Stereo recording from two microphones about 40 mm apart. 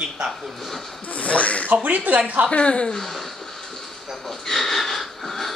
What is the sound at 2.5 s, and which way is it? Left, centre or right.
Speech, left.